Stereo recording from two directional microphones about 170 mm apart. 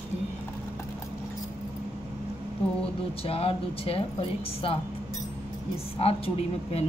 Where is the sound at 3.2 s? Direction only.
35° left (ahead or behind).